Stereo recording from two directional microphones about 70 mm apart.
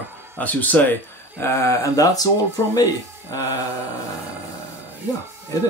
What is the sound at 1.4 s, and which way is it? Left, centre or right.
Speech, left.